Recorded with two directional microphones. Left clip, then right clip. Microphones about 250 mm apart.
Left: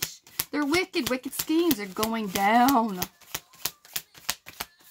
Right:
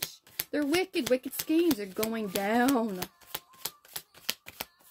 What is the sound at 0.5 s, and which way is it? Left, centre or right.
Speech, centre.